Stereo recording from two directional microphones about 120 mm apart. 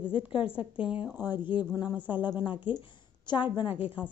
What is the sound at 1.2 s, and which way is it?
A woman's voice, 35° left (ahead or behind).